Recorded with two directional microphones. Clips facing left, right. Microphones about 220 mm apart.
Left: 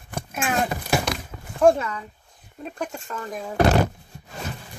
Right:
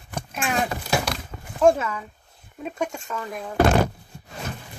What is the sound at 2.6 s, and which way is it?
Speech, centre (ahead or behind).